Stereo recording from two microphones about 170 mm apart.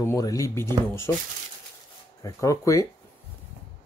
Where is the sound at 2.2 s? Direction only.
20° left (ahead or behind).